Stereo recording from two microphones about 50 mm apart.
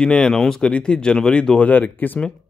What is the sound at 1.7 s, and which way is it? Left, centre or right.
Speech, left.